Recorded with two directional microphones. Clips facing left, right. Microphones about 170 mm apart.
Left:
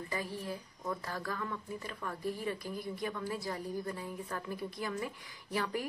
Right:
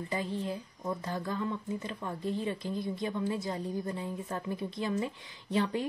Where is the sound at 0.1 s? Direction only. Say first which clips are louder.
Right 5 dB; 20° right (ahead or behind).